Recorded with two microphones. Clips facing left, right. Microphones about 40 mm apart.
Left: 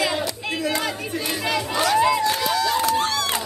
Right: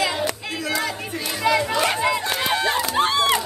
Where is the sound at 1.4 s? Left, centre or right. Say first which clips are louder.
Right 7 dB; right.